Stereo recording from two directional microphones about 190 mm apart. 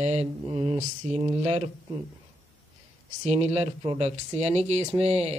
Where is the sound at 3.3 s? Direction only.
35° right (ahead or behind).